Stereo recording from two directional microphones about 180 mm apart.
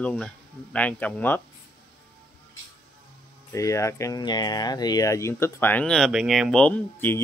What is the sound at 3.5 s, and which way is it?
Speech, 15° left (ahead or behind).